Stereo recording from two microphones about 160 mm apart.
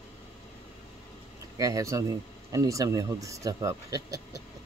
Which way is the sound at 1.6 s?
20° right (ahead or behind).